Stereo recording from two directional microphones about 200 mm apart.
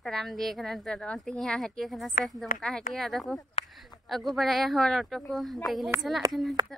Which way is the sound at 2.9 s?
Centre (ahead or behind).